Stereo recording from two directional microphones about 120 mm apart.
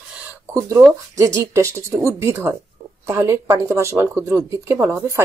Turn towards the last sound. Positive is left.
turn(degrees=-20)  # may be behind; listen again after turning